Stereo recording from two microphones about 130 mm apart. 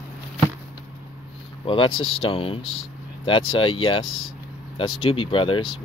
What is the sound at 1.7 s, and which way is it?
Speech, 40° left (ahead or behind).